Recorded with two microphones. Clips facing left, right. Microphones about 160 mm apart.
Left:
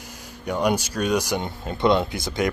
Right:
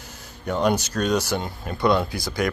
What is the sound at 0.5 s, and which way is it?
Speech, 10° left (ahead or behind).